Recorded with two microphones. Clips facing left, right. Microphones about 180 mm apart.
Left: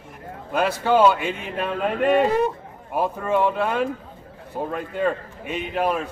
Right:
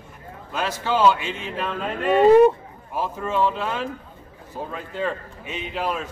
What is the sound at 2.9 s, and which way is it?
A man's voice, 60° left (ahead or behind).